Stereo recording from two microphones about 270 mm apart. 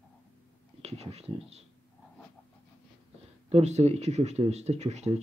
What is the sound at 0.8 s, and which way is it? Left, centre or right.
Speech, right.